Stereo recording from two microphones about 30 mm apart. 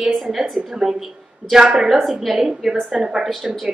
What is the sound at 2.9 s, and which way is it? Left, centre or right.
Speech, centre.